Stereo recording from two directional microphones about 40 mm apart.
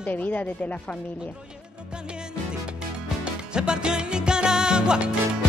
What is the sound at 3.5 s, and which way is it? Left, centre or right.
Music, right.